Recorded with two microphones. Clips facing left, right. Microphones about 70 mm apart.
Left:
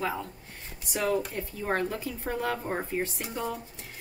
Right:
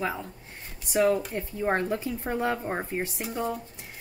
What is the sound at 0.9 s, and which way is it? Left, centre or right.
Speech, centre.